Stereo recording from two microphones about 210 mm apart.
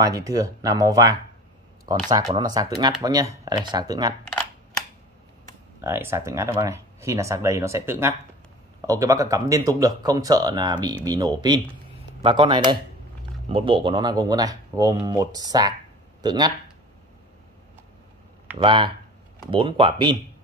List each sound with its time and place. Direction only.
0.0 s speech: 15° right (ahead or behind)
5.8 s speech: 10° right (ahead or behind)
18.6 s speech: 25° right (ahead or behind)